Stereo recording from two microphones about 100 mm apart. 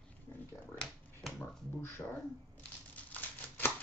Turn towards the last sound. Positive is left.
turn(degrees=20)  # may be behind; listen again after turning